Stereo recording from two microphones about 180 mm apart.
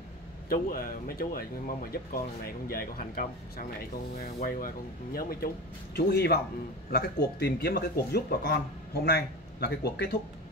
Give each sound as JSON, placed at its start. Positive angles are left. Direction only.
{"t": 0.5, "sound": "speech", "side_deg": 55}